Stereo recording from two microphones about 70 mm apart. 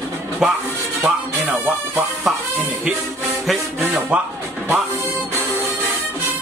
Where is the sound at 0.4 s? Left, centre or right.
Centre.